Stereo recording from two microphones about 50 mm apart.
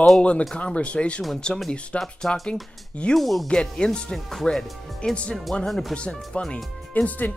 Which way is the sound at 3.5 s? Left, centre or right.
Centre.